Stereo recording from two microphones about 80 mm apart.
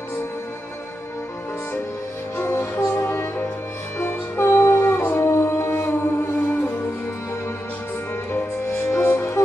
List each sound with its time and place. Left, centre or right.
2.3 s music: left
8.3 s music: left